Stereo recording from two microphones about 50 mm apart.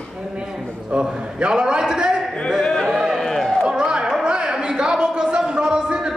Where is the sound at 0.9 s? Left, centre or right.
Centre.